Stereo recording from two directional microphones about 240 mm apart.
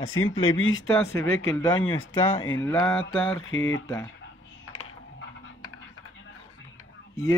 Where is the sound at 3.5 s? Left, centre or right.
Left.